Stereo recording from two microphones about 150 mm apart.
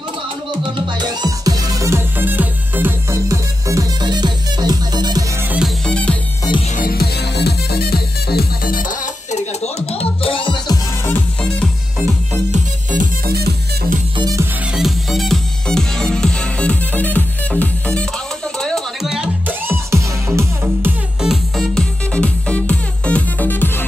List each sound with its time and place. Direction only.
0.7 s music: 30° right (ahead or behind)
5.9 s music: 5° left (ahead or behind)
6.8 s music: 85° left; by 10.8 s 30° left (ahead or behind)
11.1 s music: 10° left (ahead or behind)
13.3 s music: 90° right
14.1 s music: 25° right (ahead or behind)
14.4 s music: 5° right (ahead or behind)
21.2 s music: centre (ahead or behind)